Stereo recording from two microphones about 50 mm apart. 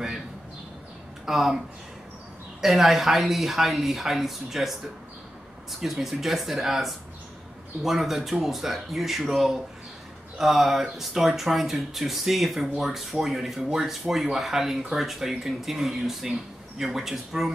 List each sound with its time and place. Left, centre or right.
1.2 s speech: centre
2.6 s speech: centre